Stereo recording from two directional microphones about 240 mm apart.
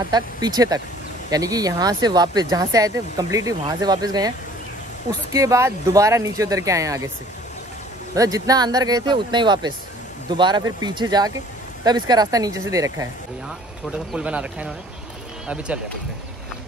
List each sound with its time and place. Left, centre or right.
0.1 s speech: centre
5.3 s speech: centre
8.1 s speech: centre
14.1 s speech: centre